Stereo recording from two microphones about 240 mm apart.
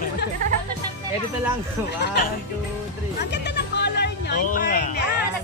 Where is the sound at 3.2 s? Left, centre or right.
Left.